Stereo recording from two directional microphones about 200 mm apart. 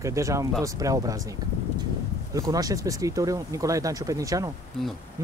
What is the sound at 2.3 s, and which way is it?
Speech, 20° right (ahead or behind).